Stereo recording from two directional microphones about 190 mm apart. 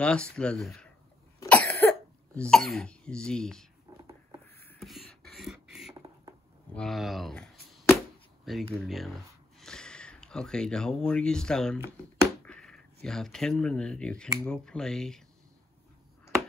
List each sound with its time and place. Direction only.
0.0 s speech: 5° left (ahead or behind)
1.4 s cough: 10° left (ahead or behind)
2.3 s speech: 5° left (ahead or behind)
4.7 s beatboxing: centre (ahead or behind)
5.9 s rodents: 20° right (ahead or behind)
6.7 s speech: 5° left (ahead or behind)
8.5 s speech: centre (ahead or behind)